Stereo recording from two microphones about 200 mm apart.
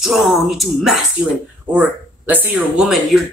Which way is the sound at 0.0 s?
Centre (ahead or behind).